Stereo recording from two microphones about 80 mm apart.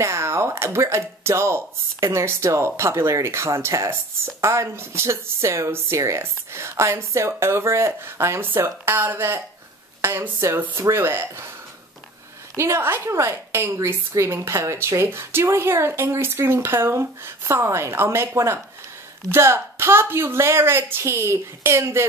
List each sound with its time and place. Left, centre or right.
0.0 s a woman's voice: right
12.5 s a woman's voice: right